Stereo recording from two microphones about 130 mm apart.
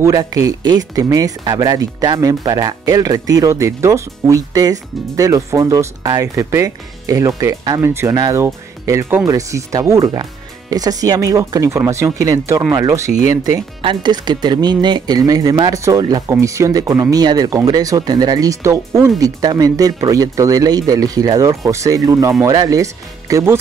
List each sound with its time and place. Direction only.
0.0 s speech: 30° right (ahead or behind)
7.8 s speech: 20° right (ahead or behind)